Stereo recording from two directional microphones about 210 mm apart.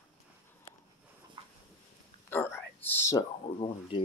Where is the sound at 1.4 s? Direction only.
25° right (ahead or behind).